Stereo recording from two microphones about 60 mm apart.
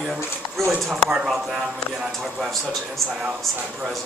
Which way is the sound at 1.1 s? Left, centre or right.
Centre.